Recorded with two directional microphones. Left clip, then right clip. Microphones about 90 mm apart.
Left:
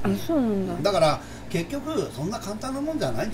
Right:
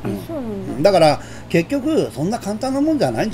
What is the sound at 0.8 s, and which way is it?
Speech, 40° right (ahead or behind).